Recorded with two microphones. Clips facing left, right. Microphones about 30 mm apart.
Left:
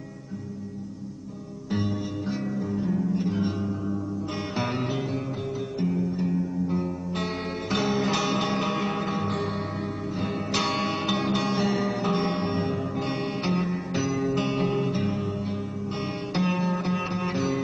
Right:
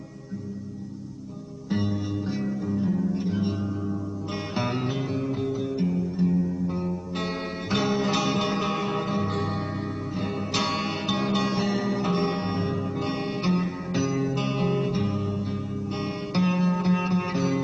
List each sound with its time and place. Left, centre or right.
1.7 s music: centre
16.3 s sitar: centre